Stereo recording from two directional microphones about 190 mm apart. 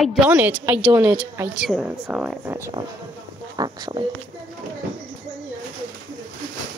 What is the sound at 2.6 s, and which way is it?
Speech, 20° right (ahead or behind).